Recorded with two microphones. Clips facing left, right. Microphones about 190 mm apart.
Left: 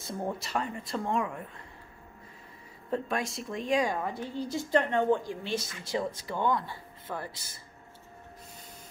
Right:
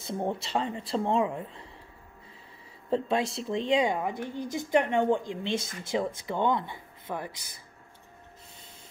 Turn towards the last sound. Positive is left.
turn(degrees=-15)  # may be behind; listen again after turning